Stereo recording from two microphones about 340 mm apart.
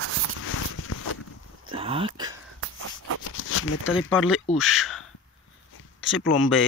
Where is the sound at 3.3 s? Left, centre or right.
Left.